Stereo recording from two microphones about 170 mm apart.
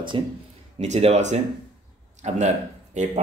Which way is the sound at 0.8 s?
40° right (ahead or behind).